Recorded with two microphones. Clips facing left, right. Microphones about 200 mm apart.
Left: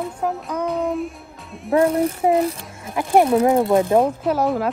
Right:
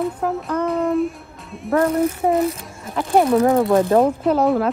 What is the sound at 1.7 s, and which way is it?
Speech, centre (ahead or behind).